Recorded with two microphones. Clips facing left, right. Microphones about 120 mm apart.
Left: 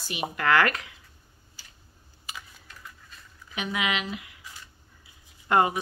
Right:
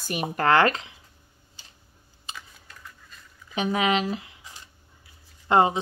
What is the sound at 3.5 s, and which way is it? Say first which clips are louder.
Speech: right 6 dB; 35° right (ahead or behind).